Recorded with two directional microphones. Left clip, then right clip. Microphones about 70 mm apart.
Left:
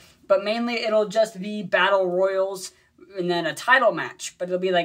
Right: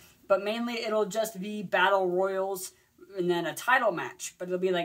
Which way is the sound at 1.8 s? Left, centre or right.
Centre.